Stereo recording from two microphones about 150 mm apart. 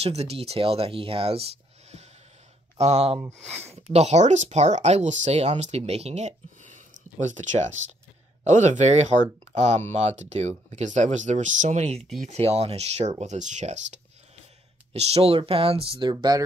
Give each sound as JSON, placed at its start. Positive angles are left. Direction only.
{"t": 0.0, "sound": "speech", "side_deg": -40}
{"t": 3.4, "sound": "speech", "side_deg": -15}
{"t": 3.7, "sound": "speech", "side_deg": -45}